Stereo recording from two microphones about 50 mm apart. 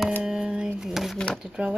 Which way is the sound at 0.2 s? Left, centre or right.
Centre.